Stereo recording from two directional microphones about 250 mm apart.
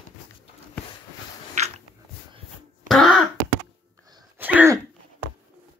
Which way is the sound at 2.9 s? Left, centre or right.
Centre.